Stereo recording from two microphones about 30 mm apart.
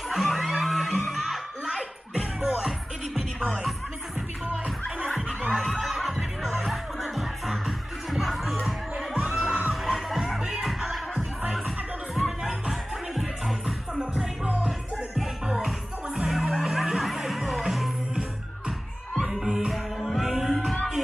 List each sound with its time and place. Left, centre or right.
0.1 s music: centre
5.5 s snicker: centre
5.9 s music: centre
9.2 s music: right
9.9 s music: centre
13.1 s music: centre
15.1 s music: centre
19.1 s music: centre
19.4 s music: centre
19.7 s music: centre